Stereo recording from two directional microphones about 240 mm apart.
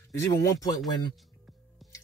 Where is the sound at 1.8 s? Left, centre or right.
Centre.